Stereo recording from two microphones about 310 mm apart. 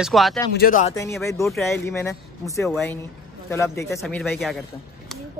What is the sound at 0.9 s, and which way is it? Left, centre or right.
A man's voice, centre.